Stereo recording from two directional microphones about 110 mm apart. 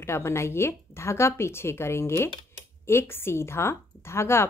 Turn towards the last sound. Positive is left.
turn(degrees=25)  # may be behind; listen again after turning